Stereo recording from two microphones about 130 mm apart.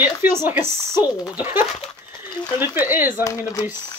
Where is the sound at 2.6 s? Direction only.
15° right (ahead or behind).